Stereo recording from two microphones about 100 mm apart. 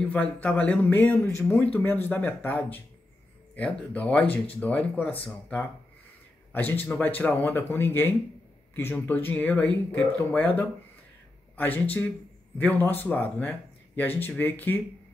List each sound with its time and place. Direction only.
0.1 s speech: 15° left (ahead or behind)